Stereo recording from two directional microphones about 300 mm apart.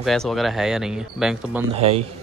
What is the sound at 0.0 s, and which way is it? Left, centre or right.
Speech, centre.